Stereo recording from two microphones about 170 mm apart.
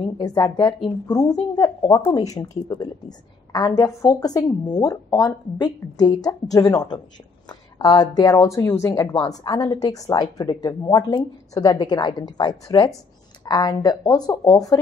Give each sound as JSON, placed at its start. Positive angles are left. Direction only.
{"t": 0.0, "sound": "a woman's voice", "side_deg": 25}